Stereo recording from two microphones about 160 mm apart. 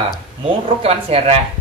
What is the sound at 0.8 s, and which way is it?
Speech, 40° right (ahead or behind).